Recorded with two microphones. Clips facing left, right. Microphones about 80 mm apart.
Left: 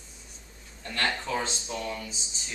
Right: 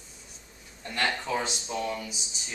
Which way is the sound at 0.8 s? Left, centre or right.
Centre.